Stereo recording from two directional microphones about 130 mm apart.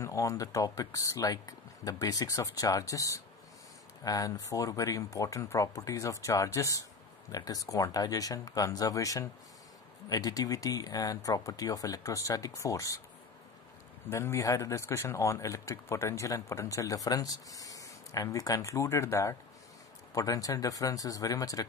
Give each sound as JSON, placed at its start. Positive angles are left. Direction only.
{"t": 0.0, "sound": "speech", "side_deg": 25}
{"t": 14.0, "sound": "speech", "side_deg": 20}